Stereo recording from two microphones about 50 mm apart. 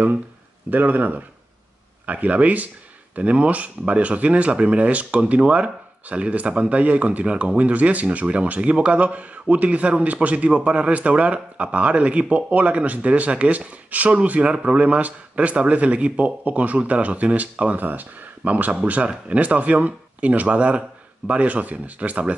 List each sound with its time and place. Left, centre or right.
0.7 s speech: right